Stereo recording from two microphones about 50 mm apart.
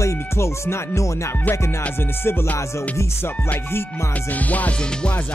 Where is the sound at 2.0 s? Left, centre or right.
Left.